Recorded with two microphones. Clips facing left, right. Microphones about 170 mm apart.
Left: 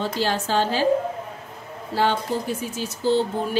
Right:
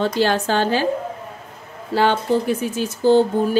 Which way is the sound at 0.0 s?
65° right (ahead or behind).